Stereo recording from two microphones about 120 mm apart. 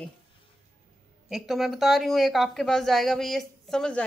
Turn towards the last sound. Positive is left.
turn(degrees=5)  # may be behind; listen again after turning